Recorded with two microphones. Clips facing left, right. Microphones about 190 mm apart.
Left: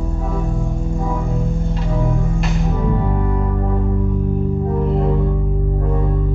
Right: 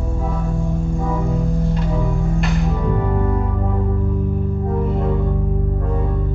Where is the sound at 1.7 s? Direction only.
Centre (ahead or behind).